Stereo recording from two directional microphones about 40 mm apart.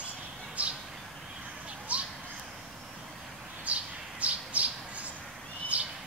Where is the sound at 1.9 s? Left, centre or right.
Right.